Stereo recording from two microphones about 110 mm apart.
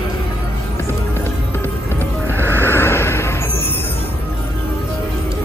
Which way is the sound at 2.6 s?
20° left (ahead or behind).